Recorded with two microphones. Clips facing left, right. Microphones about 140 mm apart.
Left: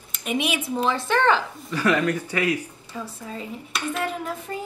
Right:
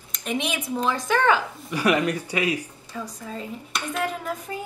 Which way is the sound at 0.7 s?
5° left (ahead or behind).